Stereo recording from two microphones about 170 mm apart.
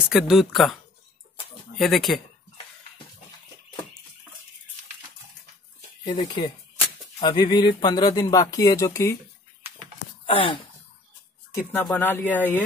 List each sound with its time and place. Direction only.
0.1 s speech: centre (ahead or behind)
1.8 s speech: centre (ahead or behind)
6.0 s speech: 25° left (ahead or behind)
10.2 s speech: 30° left (ahead or behind)
11.5 s speech: 10° left (ahead or behind)